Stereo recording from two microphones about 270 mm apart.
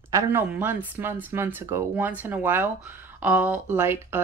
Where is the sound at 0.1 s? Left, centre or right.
Centre.